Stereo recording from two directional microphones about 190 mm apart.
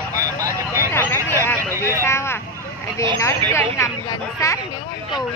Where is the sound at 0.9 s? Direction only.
15° left (ahead or behind).